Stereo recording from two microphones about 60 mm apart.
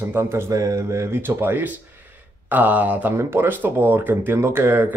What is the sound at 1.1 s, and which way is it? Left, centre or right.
Speech, right.